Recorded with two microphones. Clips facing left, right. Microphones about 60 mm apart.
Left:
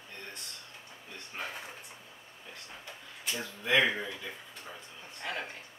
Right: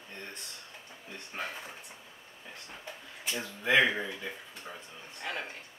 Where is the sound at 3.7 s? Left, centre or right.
Centre.